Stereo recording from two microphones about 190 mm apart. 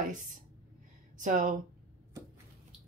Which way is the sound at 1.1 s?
40° right (ahead or behind).